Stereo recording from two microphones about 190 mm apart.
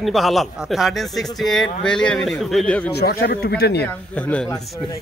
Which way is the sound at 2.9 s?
55° left (ahead or behind).